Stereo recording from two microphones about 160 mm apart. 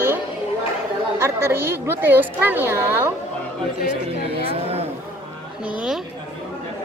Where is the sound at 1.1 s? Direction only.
15° right (ahead or behind).